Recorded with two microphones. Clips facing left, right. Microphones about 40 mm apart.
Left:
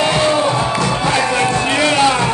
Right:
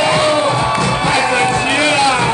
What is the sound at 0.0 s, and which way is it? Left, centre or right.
Music, right.